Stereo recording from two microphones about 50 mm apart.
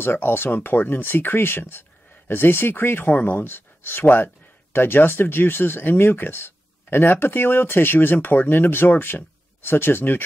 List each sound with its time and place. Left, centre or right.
0.0 s speech: left